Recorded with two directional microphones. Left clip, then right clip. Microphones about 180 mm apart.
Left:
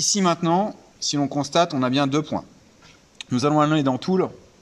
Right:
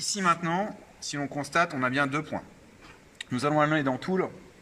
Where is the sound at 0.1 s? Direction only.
25° left (ahead or behind).